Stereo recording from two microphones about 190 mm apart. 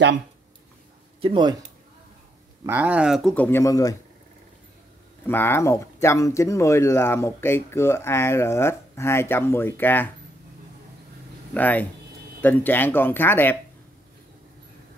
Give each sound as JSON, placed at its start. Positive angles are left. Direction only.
{"t": 1.2, "sound": "speech", "side_deg": -25}
{"t": 2.6, "sound": "speech", "side_deg": -10}
{"t": 5.2, "sound": "speech", "side_deg": 10}
{"t": 11.5, "sound": "speech", "side_deg": 10}